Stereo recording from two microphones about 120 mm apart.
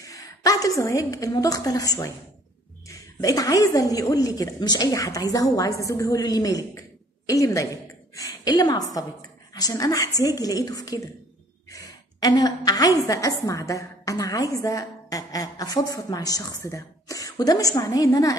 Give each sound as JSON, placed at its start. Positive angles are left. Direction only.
{"t": 0.0, "sound": "a woman's voice", "side_deg": 30}
{"t": 11.7, "sound": "sigh", "side_deg": 30}
{"t": 13.0, "sound": "a woman's voice", "side_deg": 30}